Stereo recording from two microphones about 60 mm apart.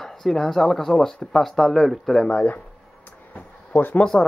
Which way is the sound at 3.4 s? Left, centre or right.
Left.